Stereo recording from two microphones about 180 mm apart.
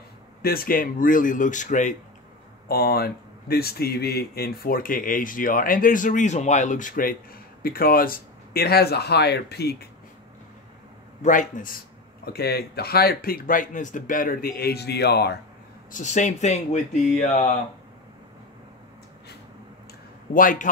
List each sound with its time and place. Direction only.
0.4 s speech: 55° left (ahead or behind)
2.7 s speech: 60° left (ahead or behind)
11.2 s speech: 45° left (ahead or behind)
12.3 s speech: 60° left (ahead or behind)
15.9 s speech: 40° left (ahead or behind)
20.3 s speech: 45° left (ahead or behind)